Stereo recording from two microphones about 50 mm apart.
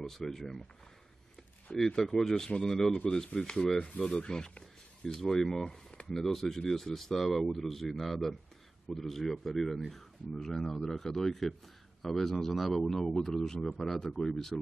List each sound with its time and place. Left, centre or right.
0.0 s speech: centre
1.8 s speech: centre
5.6 s speech: centre